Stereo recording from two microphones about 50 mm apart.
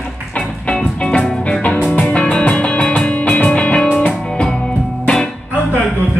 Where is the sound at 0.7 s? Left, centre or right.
Centre.